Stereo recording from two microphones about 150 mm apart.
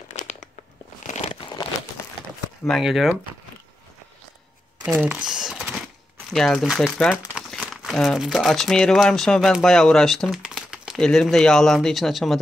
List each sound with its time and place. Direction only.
0.1 s crumpling: 50° left (ahead or behind)
2.6 s speech: centre (ahead or behind)
4.8 s typing: 10° right (ahead or behind)
6.3 s speech: centre (ahead or behind)